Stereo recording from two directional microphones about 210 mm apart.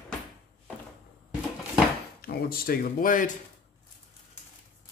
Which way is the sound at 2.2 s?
45° left (ahead or behind).